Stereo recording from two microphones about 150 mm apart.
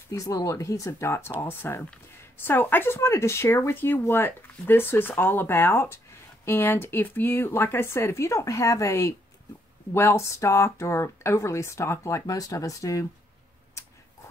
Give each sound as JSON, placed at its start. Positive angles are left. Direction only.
{"t": 0.1, "sound": "speech", "side_deg": 20}